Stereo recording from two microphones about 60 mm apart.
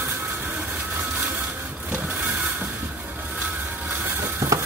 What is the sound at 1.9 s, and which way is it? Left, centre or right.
Vehicle, right.